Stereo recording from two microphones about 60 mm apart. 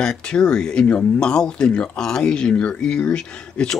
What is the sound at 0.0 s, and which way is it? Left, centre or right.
Speech, centre.